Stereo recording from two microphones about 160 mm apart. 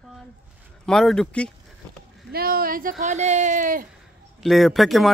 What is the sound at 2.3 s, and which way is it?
Speech, 70° right (ahead or behind).